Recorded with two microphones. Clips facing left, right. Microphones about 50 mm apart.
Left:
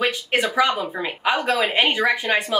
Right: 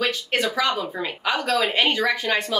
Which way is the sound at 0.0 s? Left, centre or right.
Left.